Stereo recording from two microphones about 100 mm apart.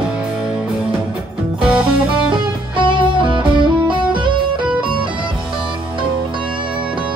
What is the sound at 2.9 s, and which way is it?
Music, 55° right (ahead or behind).